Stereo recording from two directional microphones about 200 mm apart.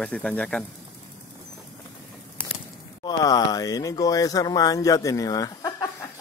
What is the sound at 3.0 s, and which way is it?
Speech, 20° left (ahead or behind).